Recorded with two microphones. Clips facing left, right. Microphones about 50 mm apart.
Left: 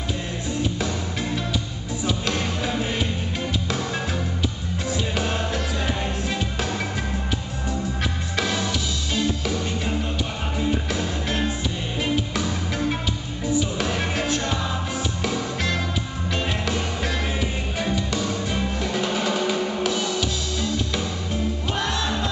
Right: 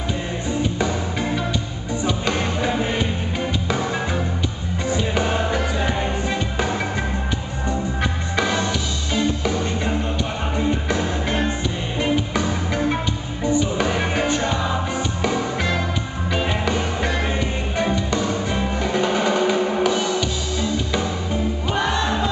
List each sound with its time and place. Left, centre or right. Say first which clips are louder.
2.0 s music: right 2 dB; centre
4.8 s music: right 4 dB; centre
8.4 s music: right 4 dB; centre